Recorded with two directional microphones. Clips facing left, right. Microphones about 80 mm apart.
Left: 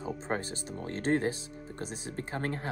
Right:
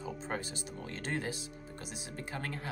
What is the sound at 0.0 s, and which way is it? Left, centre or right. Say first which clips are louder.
Speech: left 4 dB; left.